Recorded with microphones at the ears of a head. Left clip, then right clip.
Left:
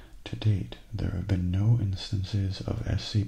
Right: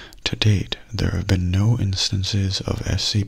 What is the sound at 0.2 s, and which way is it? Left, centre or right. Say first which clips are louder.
Speech: right 14 dB; right.